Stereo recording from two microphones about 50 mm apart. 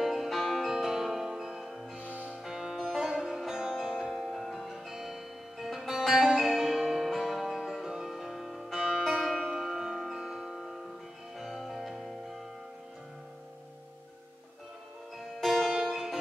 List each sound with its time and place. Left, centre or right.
0.0 s music: centre
2.0 s music: right
2.4 s music: centre
4.1 s music: centre
15.1 s music: centre